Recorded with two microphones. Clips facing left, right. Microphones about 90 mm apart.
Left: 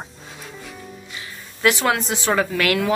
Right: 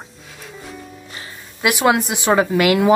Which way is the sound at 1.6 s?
15° right (ahead or behind).